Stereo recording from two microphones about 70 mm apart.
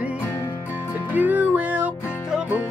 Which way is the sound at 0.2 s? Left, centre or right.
Left.